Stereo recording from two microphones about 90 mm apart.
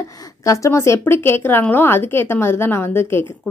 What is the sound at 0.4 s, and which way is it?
Speech, 35° left (ahead or behind).